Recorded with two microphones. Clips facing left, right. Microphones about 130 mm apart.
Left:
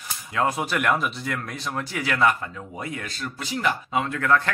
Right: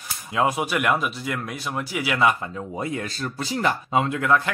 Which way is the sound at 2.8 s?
30° right (ahead or behind).